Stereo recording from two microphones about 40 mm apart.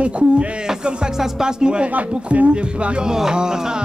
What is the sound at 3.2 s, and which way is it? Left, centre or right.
Music, centre.